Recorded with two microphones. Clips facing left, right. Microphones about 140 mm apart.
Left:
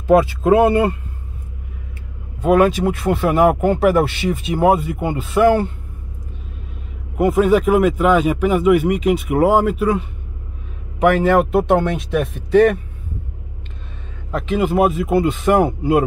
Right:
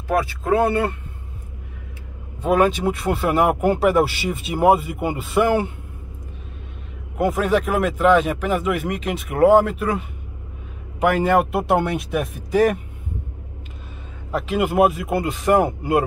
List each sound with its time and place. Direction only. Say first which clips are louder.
0.0 s speech: left 8 dB; 20° left (ahead or behind)
2.4 s speech: left 4 dB; centre (ahead or behind)
7.2 s speech: left 5 dB; centre (ahead or behind)
14.3 s speech: left 2 dB; 5° right (ahead or behind)